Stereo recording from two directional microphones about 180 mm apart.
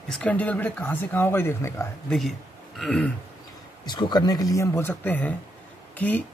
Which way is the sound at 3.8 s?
25° left (ahead or behind).